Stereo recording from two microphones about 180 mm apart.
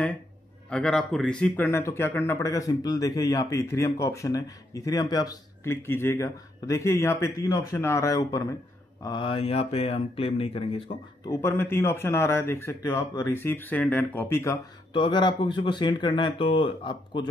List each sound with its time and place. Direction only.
0.7 s speech: 5° left (ahead or behind); by 11.0 s 30° left (ahead or behind)
11.2 s speech: 15° left (ahead or behind)
14.9 s speech: 25° left (ahead or behind)